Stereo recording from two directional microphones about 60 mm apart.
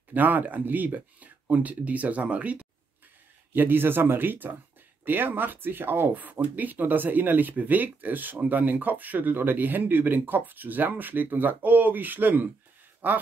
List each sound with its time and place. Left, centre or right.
0.1 s speech: right
3.5 s speech: right